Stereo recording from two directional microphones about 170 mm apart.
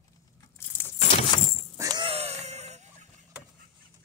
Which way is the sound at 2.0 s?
35° right (ahead or behind).